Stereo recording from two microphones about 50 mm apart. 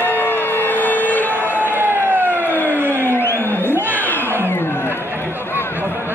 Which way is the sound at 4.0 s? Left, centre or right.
Left.